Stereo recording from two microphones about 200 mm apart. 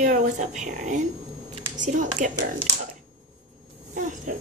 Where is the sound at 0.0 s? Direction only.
40° right (ahead or behind).